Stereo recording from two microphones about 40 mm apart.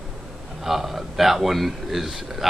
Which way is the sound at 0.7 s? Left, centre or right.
Centre.